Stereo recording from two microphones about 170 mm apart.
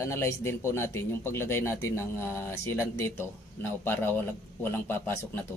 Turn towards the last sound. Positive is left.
turn(degrees=15)  # may be behind; listen again after turning